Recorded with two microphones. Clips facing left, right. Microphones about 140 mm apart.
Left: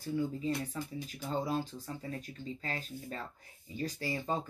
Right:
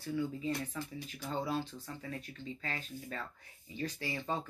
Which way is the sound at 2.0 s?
35° left (ahead or behind).